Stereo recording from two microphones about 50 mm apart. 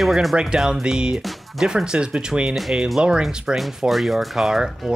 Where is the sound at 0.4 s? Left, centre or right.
Centre.